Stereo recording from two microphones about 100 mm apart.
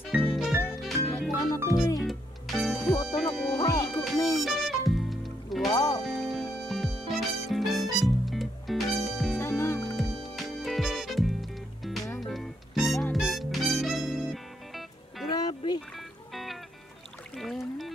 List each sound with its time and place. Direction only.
0.1 s music: 15° right (ahead or behind)
0.7 s music: centre (ahead or behind)
1.3 s music: 35° left (ahead or behind)
2.0 s music: centre (ahead or behind)
2.8 s music: 35° left (ahead or behind)
3.2 s music: centre (ahead or behind)
3.5 s music: 35° left (ahead or behind)
4.4 s music: centre (ahead or behind)
5.7 s music: 40° left (ahead or behind)
6.0 s music: centre (ahead or behind)
9.4 s music: 25° left (ahead or behind)
9.8 s music: centre (ahead or behind)
15.3 s music: 45° left (ahead or behind)
17.4 s music: centre (ahead or behind)